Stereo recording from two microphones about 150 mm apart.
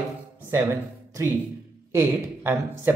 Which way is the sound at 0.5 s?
20° right (ahead or behind).